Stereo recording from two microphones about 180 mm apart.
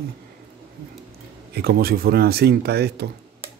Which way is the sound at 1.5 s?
60° right (ahead or behind).